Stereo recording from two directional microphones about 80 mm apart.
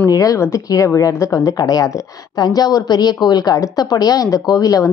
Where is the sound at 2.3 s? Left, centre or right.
Left.